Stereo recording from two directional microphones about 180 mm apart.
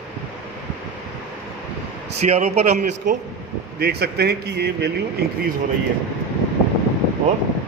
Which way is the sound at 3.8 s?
65° right (ahead or behind).